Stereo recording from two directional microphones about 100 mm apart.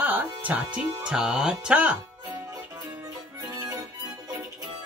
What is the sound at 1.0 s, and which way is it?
Speech, 5° right (ahead or behind).